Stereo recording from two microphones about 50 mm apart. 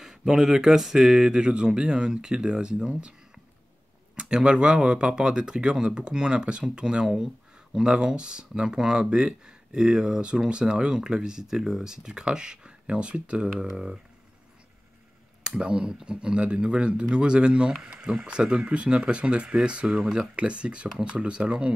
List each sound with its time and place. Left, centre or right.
0.0 s speech: centre
4.2 s speech: centre
15.4 s speech: centre